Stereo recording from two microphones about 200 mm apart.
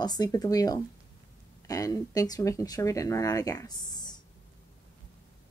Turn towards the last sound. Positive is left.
turn(degrees=20)  # may be behind; listen again after turning